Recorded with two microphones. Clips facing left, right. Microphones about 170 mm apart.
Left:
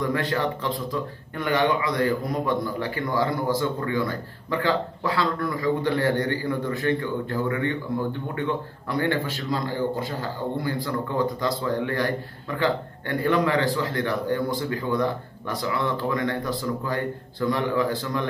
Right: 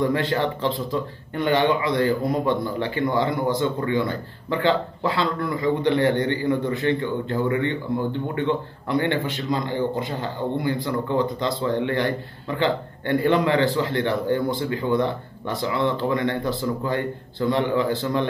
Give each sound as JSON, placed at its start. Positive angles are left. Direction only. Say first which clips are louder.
{"t": 0.0, "sound": "speech", "louder": "right 3 dB", "side_deg": -30}